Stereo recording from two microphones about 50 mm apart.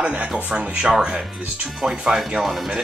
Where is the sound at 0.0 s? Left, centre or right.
Right.